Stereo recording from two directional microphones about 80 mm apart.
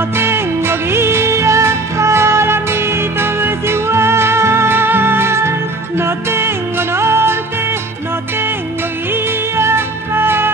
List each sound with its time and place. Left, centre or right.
0.1 s music: right
9.1 s music: right